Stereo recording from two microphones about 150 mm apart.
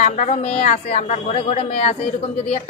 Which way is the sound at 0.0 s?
55° left (ahead or behind).